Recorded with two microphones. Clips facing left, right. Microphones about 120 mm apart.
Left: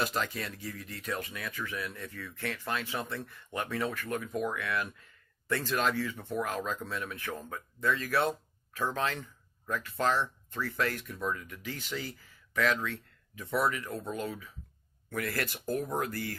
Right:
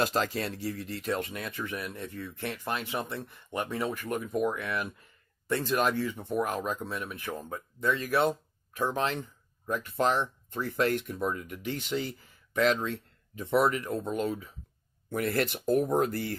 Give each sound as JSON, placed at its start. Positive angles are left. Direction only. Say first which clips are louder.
{"t": 0.0, "sound": "speech", "louder": "right 4 dB", "side_deg": -35}